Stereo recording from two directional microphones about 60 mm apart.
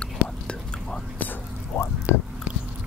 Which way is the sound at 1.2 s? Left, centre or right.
Left.